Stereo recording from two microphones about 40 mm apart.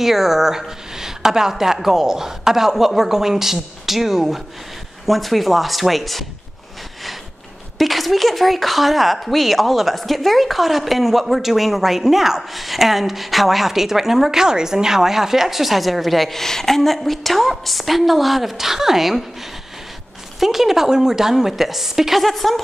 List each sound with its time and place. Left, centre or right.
0.0 s speech: centre
7.8 s speech: centre
20.3 s speech: centre
22.2 s speech: centre